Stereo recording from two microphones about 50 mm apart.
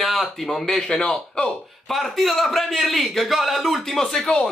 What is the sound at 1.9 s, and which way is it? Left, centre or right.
Speech, centre.